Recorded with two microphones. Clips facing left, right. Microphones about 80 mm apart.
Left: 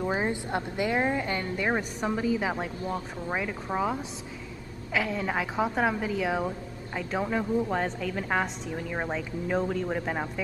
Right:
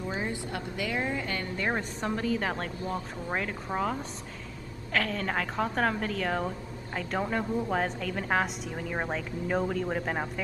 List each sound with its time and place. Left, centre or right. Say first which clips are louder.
0.0 s a woman's voice: left 5 dB; left
1.7 s a woman's voice: left 2 dB; centre